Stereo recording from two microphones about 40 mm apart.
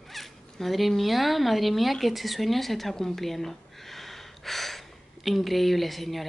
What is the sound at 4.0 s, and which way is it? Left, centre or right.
Gasp, centre.